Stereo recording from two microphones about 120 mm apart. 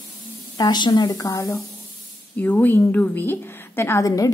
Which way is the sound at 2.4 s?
15° left (ahead or behind).